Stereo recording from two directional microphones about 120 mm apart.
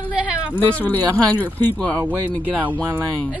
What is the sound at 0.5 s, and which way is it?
Speech, 15° left (ahead or behind).